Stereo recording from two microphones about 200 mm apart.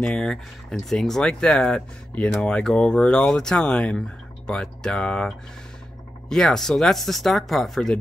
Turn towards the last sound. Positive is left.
turn(degrees=0)  # may be behind; listen again after turning